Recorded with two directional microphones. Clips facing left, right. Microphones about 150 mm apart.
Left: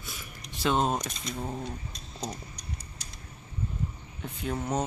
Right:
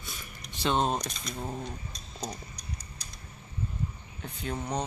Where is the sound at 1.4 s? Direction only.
Centre (ahead or behind).